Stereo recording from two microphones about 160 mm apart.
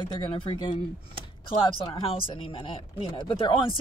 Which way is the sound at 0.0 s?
30° left (ahead or behind).